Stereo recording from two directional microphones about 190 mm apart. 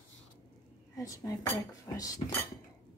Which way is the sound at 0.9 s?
15° left (ahead or behind).